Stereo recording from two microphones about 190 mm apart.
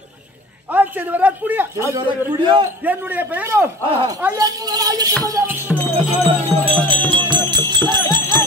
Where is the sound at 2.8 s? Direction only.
10° right (ahead or behind).